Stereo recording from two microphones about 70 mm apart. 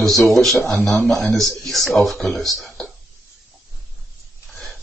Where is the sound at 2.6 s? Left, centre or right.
Centre.